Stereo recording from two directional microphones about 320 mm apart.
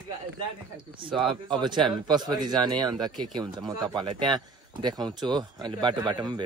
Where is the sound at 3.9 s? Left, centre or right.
Centre.